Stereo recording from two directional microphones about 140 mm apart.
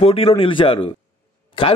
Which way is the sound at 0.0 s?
40° left (ahead or behind).